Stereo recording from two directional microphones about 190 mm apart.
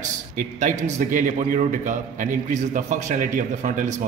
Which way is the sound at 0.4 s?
40° right (ahead or behind).